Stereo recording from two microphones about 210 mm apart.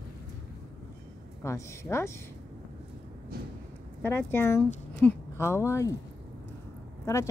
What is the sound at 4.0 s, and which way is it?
Speech, 10° left (ahead or behind).